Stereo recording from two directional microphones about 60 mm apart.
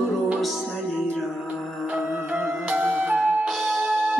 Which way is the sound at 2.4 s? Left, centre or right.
Right.